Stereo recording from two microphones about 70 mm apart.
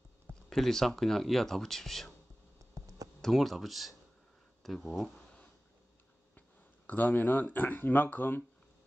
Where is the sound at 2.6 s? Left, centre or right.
Right.